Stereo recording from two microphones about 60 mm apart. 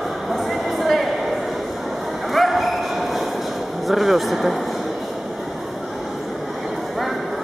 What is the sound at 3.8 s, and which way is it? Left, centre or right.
Speech, centre.